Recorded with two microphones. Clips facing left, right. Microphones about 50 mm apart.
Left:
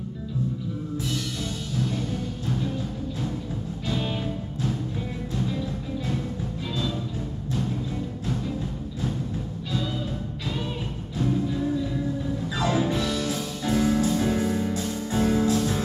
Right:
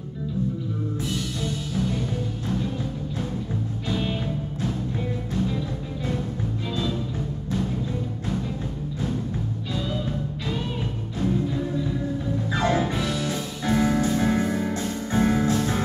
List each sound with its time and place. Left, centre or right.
3.8 s music: centre
12.4 s music: right
12.8 s music: centre